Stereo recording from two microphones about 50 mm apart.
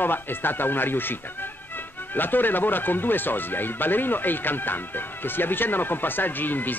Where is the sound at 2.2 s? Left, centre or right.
Left.